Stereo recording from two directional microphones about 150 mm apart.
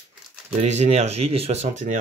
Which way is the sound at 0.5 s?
50° right (ahead or behind).